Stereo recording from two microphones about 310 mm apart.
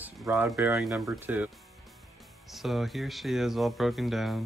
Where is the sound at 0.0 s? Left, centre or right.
Centre.